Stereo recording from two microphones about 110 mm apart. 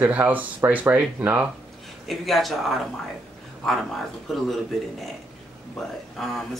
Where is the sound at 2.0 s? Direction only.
Centre (ahead or behind).